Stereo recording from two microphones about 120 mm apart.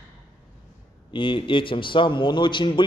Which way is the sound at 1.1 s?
45° left (ahead or behind).